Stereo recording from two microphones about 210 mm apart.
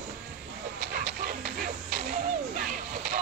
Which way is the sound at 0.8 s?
50° right (ahead or behind).